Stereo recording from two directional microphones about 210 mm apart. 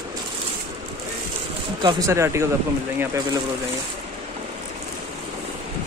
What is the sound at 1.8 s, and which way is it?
Speech, 20° right (ahead or behind).